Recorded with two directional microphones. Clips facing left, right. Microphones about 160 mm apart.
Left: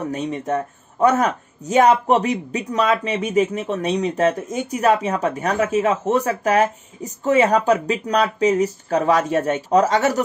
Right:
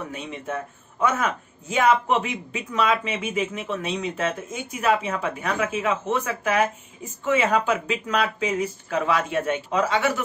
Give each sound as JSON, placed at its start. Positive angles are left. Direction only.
{"t": 0.0, "sound": "speech", "side_deg": 40}